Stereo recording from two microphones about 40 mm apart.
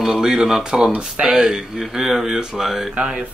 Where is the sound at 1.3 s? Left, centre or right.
Centre.